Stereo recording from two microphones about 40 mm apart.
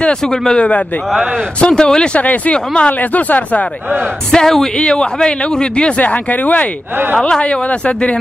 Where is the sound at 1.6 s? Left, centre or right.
Left.